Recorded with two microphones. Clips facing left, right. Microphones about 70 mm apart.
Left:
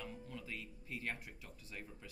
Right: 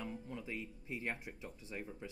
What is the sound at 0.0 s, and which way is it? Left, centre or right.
Speech, right.